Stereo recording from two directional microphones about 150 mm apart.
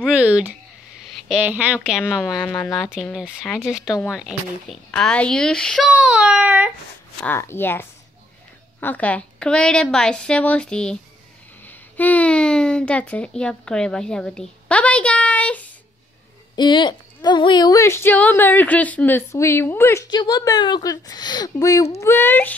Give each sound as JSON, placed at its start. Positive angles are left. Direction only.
{"t": 0.0, "sound": "a woman's voice", "side_deg": -10}
{"t": 4.9, "sound": "a child's voice", "side_deg": 5}
{"t": 7.2, "sound": "a woman's voice", "side_deg": 15}
{"t": 16.5, "sound": "a woman's voice", "side_deg": 30}